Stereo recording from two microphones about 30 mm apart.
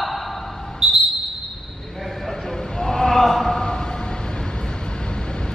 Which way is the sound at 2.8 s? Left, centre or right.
Centre.